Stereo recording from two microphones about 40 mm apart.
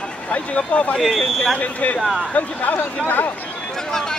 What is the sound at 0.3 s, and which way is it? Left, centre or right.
Speech, left.